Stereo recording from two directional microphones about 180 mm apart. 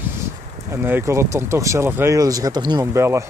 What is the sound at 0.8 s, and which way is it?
Speech, 15° right (ahead or behind).